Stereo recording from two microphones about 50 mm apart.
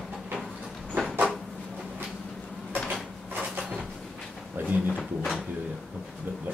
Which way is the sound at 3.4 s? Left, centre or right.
Centre.